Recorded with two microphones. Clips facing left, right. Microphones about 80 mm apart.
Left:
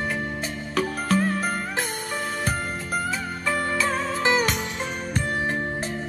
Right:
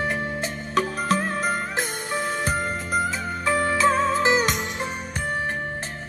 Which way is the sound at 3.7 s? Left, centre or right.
Right.